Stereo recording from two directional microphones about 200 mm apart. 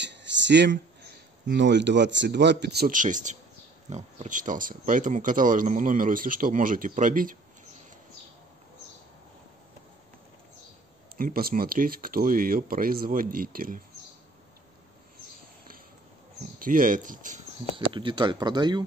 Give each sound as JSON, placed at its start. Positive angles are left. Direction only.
{"t": 0.0, "sound": "speech", "side_deg": -60}
{"t": 11.1, "sound": "speech", "side_deg": -45}
{"t": 16.5, "sound": "speech", "side_deg": -45}
{"t": 17.7, "sound": "speech", "side_deg": -25}